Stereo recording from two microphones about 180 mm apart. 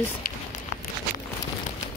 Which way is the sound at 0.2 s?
50° left (ahead or behind).